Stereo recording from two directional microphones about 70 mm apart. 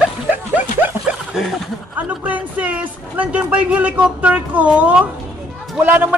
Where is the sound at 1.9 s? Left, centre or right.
Right.